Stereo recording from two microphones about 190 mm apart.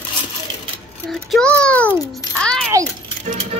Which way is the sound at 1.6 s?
5° left (ahead or behind).